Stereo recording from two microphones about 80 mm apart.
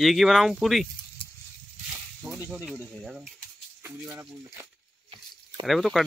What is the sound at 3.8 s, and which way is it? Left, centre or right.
Speech, right.